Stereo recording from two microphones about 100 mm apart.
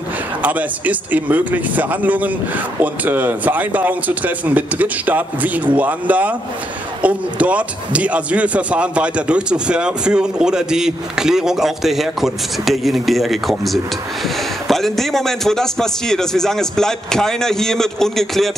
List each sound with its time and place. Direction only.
0.4 s a man's voice: 15° right (ahead or behind); by 18.5 s 5° left (ahead or behind)